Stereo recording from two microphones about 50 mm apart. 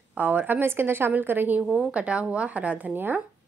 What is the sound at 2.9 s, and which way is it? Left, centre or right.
Speech, right.